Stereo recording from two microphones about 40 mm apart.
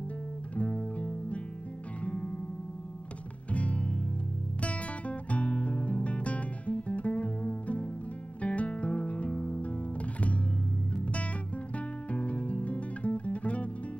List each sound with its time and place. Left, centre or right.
0.6 s music: left
3.5 s music: left
12.1 s music: left